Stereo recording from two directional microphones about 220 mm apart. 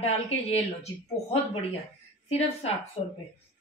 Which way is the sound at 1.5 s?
25° left (ahead or behind).